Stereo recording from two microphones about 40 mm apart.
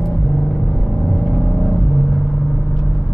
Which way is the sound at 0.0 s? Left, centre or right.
Centre.